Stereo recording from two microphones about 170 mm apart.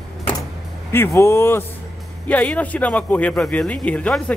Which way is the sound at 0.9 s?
15° left (ahead or behind).